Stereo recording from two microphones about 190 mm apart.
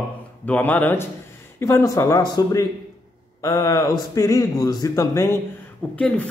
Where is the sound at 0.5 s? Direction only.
10° left (ahead or behind).